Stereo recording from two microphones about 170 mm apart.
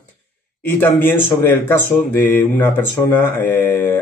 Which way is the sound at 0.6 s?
10° left (ahead or behind).